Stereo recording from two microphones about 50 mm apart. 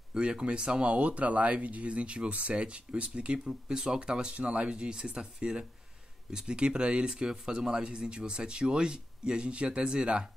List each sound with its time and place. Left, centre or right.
0.1 s speech: centre